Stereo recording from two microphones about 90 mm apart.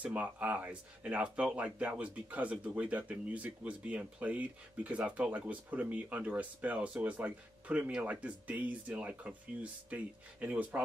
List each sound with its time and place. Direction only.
0.0 s speech: 15° right (ahead or behind)